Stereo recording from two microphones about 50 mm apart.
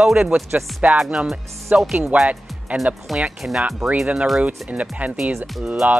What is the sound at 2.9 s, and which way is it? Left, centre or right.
Speech, right.